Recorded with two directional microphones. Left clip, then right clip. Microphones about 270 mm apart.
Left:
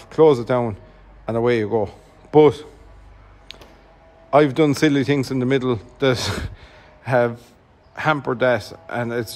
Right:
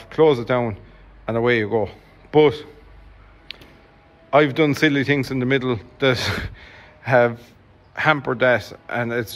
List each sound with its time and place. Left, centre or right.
0.0 s a man's voice: centre
4.3 s speech: centre